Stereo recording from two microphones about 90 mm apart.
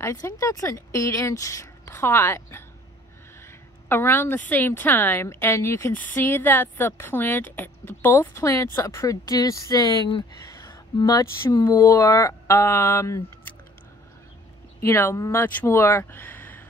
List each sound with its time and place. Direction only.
0.0 s speech: 30° left (ahead or behind)
3.9 s a woman's voice: 25° left (ahead or behind); by 10.0 s 40° left (ahead or behind)
10.7 s a sound: 45° left (ahead or behind)
11.7 s speech: 35° left (ahead or behind)
14.8 s a woman's voice: 25° left (ahead or behind)
15.1 s speech: 35° left (ahead or behind)
15.4 s speech: 25° left (ahead or behind)